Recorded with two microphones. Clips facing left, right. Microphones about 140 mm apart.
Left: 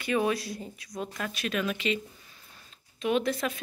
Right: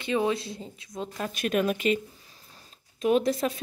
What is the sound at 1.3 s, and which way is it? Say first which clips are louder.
A woman's voice: right 6 dB; 45° right (ahead or behind).